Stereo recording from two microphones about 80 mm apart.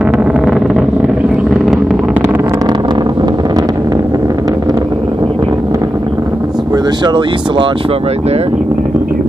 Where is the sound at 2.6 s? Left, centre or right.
Right.